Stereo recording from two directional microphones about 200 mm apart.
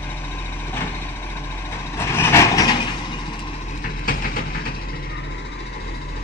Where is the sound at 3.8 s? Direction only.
45° left (ahead or behind).